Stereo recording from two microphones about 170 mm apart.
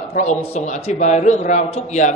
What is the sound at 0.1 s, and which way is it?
A man's voice, 45° left (ahead or behind).